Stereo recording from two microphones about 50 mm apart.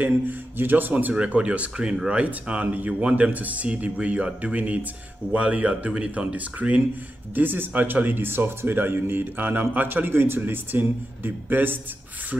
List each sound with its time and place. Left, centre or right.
0.0 s a man's voice: right
1.1 s speech: right